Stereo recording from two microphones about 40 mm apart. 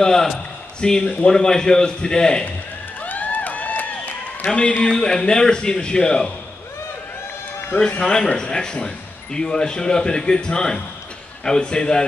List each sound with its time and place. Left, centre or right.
0.0 s a man's voice: centre
3.1 s a sound: left
4.5 s speech: left
8.0 s speech: centre